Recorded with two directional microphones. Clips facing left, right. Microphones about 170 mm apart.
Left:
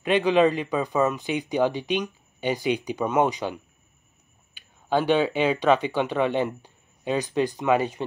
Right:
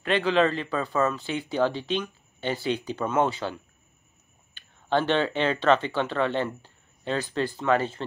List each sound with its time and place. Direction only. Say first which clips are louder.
0.0 s a man's voice: left 3 dB; 15° left (ahead or behind)